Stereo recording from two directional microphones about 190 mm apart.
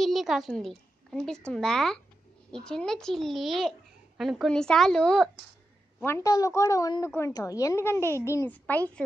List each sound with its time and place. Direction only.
0.0 s a woman's voice: centre (ahead or behind)